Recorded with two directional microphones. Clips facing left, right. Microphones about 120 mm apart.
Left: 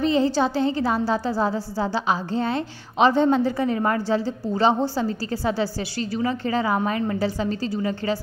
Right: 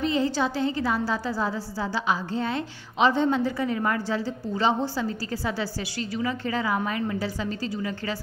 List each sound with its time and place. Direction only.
0.0 s a woman's voice: 30° left (ahead or behind)